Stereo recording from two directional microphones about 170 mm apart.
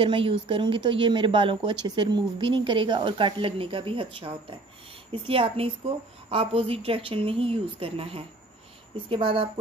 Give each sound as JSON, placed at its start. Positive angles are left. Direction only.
{"t": 0.0, "sound": "a woman's voice", "side_deg": -30}